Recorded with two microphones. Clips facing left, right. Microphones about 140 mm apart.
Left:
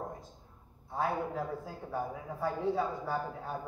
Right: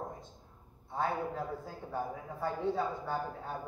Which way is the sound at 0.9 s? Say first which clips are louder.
Left 1 dB; 5° left (ahead or behind).